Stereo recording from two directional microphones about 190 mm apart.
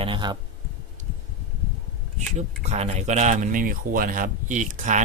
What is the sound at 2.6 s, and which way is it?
Speech, 35° right (ahead or behind).